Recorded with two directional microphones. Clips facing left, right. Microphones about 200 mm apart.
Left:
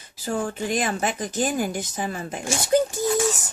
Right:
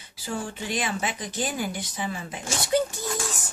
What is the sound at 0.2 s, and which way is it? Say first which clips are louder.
Speech: left 6 dB; 50° left (ahead or behind).